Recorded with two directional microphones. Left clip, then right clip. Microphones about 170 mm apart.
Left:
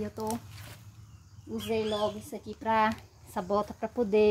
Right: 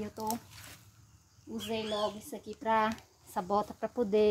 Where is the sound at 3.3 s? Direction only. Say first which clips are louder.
Left 2 dB; 25° right (ahead or behind).